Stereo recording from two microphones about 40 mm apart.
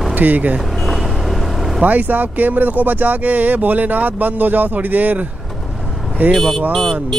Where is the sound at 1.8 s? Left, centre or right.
Right.